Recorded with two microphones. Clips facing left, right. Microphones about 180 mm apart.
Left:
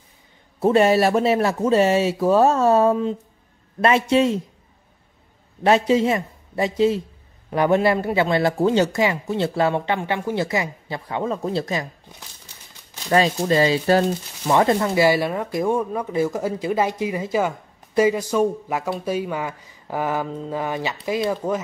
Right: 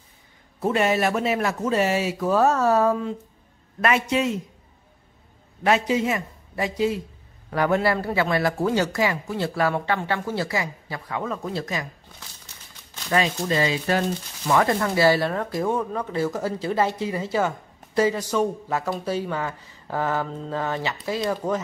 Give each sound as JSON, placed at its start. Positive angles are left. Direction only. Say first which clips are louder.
{"t": 0.6, "sound": "speech", "louder": "left 6 dB", "side_deg": 30}
{"t": 5.6, "sound": "speech", "louder": "left 4 dB", "side_deg": 30}
{"t": 13.1, "sound": "speech", "louder": "left 5 dB", "side_deg": 35}